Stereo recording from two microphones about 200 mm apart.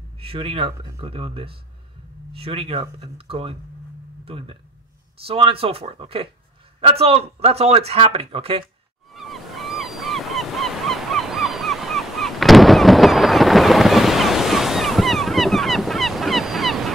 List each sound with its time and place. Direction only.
0.2 s speech: 25° right (ahead or behind)
9.1 s goose: centre (ahead or behind)